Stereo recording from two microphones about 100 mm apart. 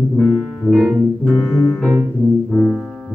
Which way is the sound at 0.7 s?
10° right (ahead or behind).